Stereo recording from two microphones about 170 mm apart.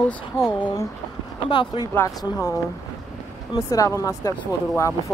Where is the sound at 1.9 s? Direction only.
20° left (ahead or behind).